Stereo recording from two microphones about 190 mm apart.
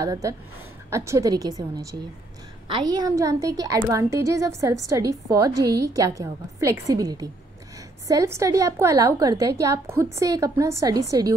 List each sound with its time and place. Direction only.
0.0 s a woman's voice: 20° right (ahead or behind)